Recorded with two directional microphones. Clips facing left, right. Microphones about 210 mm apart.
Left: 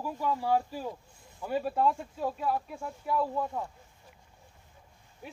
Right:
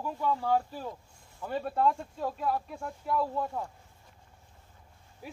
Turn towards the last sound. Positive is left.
turn(degrees=0)  # may be behind; listen again after turning